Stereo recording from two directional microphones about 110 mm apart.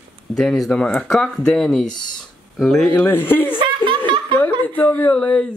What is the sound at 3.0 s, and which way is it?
Speech, 20° left (ahead or behind).